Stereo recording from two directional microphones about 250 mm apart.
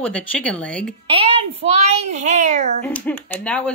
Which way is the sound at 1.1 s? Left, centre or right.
Right.